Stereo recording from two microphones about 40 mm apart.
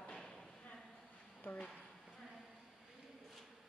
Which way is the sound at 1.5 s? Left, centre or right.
Left.